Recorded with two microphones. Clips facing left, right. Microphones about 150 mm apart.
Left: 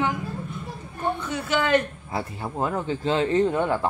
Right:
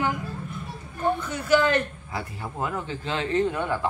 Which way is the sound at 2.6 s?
30° left (ahead or behind).